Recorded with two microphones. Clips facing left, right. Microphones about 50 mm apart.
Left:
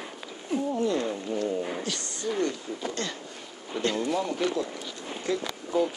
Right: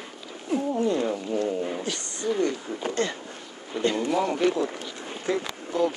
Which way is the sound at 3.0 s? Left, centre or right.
Centre.